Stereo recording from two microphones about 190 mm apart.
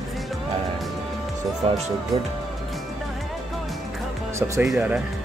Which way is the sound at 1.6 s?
30° right (ahead or behind).